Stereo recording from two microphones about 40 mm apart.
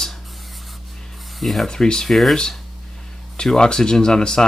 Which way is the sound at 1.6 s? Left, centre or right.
Centre.